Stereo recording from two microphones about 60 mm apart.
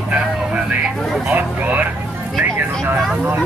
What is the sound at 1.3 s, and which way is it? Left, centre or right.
Speech, right.